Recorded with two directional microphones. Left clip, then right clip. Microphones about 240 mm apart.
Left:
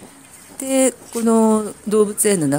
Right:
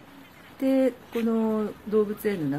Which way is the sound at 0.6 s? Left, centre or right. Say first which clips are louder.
Left 6 dB; left.